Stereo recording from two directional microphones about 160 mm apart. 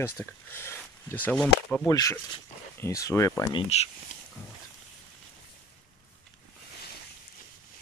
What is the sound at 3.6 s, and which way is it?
Speech, 40° left (ahead or behind).